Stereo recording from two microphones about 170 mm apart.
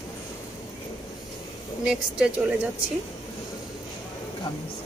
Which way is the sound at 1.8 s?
5° right (ahead or behind).